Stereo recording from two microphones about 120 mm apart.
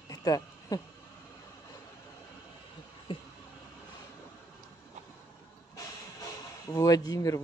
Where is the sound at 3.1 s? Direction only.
45° left (ahead or behind).